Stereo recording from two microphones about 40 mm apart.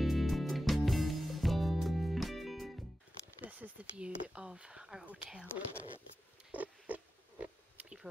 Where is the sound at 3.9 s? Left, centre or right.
Right.